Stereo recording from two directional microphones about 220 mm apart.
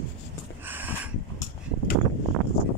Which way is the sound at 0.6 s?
10° right (ahead or behind).